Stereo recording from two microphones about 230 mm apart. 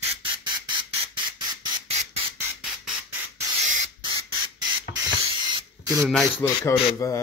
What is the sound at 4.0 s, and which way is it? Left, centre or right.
Squawk, centre.